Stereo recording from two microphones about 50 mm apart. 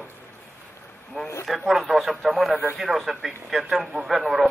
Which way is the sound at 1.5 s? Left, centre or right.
Centre.